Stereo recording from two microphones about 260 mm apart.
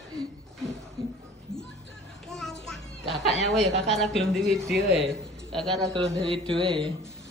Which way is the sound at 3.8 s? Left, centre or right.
Centre.